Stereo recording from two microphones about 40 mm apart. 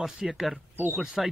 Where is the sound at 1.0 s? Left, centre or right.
Centre.